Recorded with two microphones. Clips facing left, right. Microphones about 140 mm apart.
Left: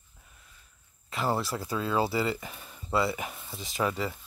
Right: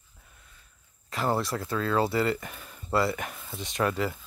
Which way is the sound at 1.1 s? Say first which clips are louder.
Right 2 dB; centre (ahead or behind).